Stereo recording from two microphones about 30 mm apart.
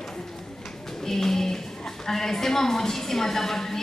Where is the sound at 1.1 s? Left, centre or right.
Centre.